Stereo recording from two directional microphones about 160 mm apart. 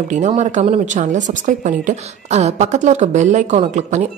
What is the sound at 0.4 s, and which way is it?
Speech, 45° right (ahead or behind).